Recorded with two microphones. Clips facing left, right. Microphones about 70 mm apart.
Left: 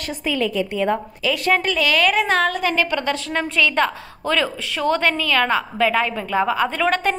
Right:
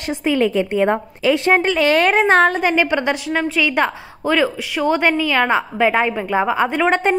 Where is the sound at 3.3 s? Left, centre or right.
Centre.